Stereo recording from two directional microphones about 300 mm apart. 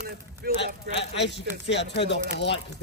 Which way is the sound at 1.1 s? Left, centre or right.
Left.